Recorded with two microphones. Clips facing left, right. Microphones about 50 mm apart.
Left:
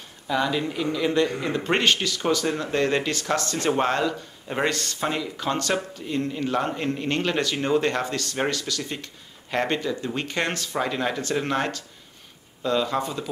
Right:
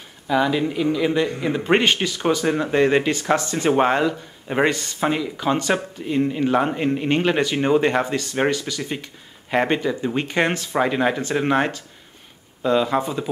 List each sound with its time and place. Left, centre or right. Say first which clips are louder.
0.3 s speech: right 5 dB; centre